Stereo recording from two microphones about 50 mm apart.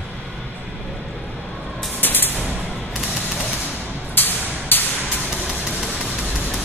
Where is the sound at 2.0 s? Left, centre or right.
Left.